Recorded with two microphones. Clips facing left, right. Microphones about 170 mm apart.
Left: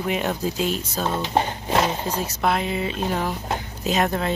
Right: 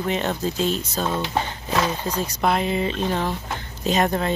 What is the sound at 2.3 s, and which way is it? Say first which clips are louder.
Speech: right 2 dB; centre (ahead or behind).